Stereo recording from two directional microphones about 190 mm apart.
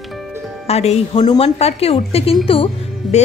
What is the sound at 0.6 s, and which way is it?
A woman's voice, 35° left (ahead or behind).